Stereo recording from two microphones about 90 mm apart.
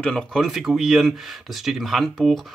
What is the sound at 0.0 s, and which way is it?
Speech, 10° left (ahead or behind).